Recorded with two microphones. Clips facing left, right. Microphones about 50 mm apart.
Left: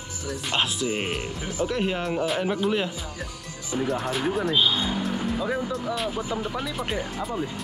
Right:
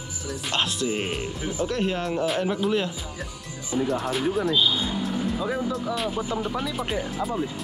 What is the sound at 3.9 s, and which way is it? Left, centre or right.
Speech, centre.